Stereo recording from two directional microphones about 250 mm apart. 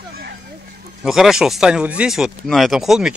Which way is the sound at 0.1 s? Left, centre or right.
Right.